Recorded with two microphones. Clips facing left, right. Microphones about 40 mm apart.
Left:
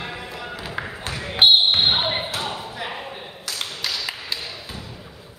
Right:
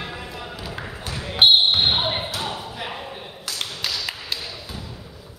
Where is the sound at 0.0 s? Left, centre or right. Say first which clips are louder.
Left 1 dB; centre.